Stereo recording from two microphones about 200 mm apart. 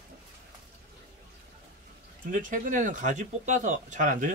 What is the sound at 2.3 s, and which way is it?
Speech, 40° right (ahead or behind).